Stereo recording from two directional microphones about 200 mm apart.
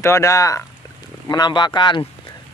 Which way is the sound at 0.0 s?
15° left (ahead or behind).